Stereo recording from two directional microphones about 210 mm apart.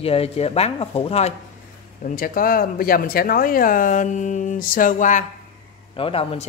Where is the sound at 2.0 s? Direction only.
40° left (ahead or behind).